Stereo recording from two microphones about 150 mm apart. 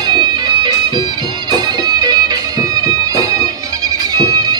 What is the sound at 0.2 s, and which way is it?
Music, 30° right (ahead or behind).